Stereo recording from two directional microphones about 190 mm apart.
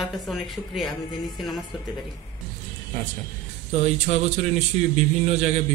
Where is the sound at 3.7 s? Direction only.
35° right (ahead or behind).